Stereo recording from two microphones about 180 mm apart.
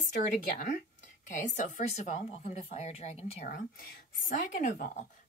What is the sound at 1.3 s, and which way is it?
A woman's voice, 45° left (ahead or behind).